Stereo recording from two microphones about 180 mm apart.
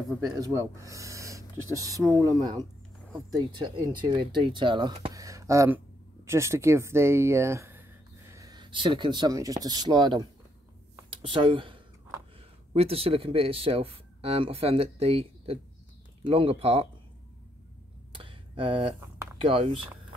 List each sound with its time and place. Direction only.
0.4 s speech: 20° right (ahead or behind)
5.1 s a sound: 20° right (ahead or behind)
6.2 s speech: 15° right (ahead or behind)
11.2 s speech: 30° right (ahead or behind)
18.1 s a sound: 30° right (ahead or behind)
19.4 s speech: 30° right (ahead or behind)